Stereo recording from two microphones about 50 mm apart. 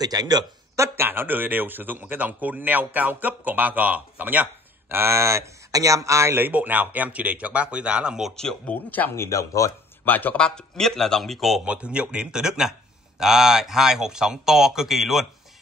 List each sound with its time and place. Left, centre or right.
1.0 s speech: right
5.1 s speech: right
5.9 s speech: right
6.3 s speech: right; by 8.2 s centre
8.6 s speech: left
9.1 s speech: left
10.0 s speech: left
10.3 s speech: centre
11.6 s speech: right; by 15.2 s centre